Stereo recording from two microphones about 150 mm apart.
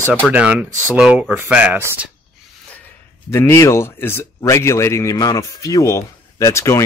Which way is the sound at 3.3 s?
15° left (ahead or behind).